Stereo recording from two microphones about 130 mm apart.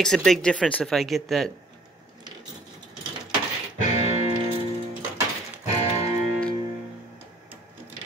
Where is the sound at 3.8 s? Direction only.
55° left (ahead or behind).